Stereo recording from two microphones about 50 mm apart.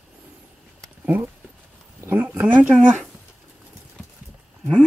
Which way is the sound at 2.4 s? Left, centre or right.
Right.